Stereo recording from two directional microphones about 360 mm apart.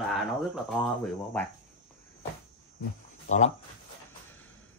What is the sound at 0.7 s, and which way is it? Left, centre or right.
Speech, centre.